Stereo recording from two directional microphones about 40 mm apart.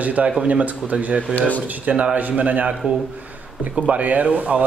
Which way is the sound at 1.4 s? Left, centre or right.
Left.